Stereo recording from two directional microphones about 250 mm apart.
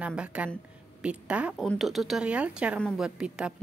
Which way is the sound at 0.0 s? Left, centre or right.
Centre.